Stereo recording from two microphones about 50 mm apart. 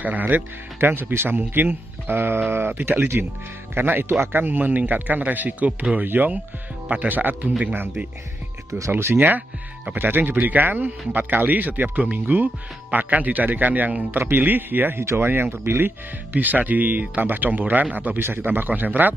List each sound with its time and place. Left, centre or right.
0.0 s speech: right
0.7 s speech: right
4.4 s speech: right
6.0 s speech: right
9.9 s speech: right
16.3 s speech: right